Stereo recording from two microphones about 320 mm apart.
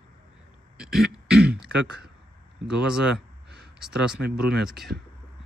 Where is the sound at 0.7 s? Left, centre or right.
Centre.